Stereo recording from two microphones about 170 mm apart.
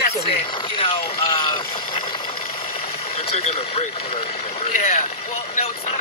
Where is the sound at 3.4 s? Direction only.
35° left (ahead or behind).